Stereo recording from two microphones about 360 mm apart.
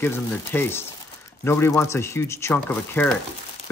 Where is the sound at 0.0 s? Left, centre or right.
Centre.